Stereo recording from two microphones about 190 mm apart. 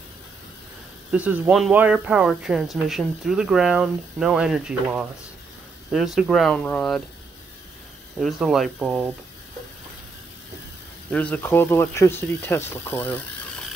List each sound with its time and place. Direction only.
1.1 s speech: 5° right (ahead or behind)
8.2 s speech: centre (ahead or behind)
11.1 s speech: 5° left (ahead or behind)